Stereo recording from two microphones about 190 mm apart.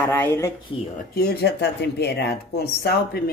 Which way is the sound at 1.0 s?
55° left (ahead or behind).